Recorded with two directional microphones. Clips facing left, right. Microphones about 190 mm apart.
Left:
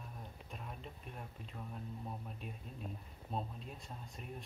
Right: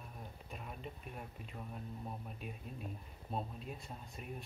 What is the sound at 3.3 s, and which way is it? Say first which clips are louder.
Speech: right 1 dB; 5° right (ahead or behind).